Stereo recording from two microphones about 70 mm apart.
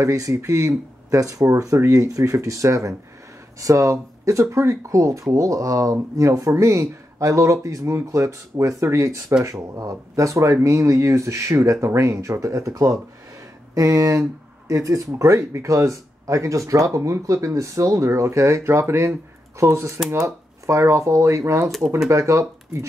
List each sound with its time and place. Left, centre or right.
0.0 s speech: right